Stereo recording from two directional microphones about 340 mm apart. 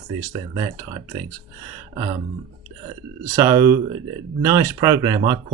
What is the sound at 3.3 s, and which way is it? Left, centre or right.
Speech, centre.